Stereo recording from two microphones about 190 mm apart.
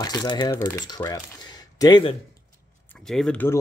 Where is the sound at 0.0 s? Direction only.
20° left (ahead or behind).